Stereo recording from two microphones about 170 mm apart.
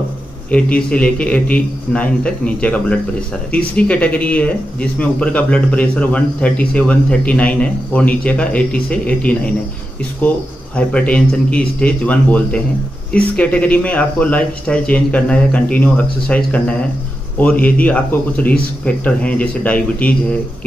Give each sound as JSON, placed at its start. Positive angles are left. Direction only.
{"t": 0.5, "sound": "speech", "side_deg": 5}